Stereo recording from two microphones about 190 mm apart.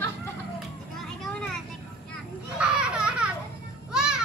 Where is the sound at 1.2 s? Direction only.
5° left (ahead or behind).